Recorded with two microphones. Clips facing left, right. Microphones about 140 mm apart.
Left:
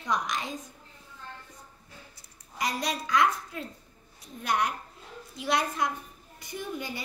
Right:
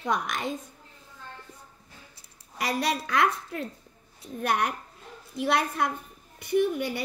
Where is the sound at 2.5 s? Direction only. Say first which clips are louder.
Right 3 dB; 60° right (ahead or behind).